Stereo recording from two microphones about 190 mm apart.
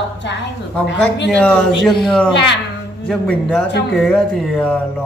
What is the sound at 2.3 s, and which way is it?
Speech, 65° left (ahead or behind).